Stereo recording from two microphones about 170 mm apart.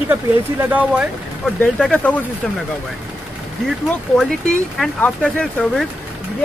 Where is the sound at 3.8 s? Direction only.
5° left (ahead or behind).